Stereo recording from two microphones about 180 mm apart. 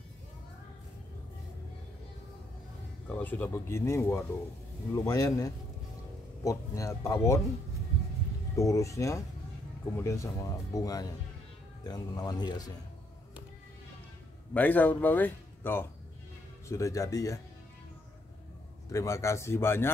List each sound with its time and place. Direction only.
3.1 s speech: 10° left (ahead or behind)
8.5 s speech: 15° left (ahead or behind)
14.5 s speech: 10° left (ahead or behind)
18.9 s speech: 15° left (ahead or behind)